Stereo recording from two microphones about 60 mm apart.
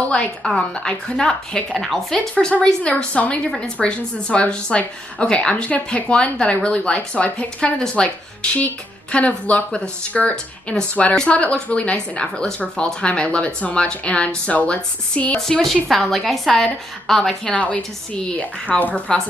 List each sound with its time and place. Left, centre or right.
0.1 s a woman's voice: centre
2.3 s speech: centre
15.4 s a woman's voice: centre
17.5 s speech: left